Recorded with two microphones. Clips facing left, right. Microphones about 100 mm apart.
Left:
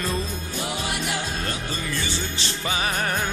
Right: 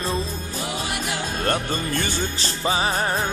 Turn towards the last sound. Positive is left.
turn(degrees=-30)  # may be behind; listen again after turning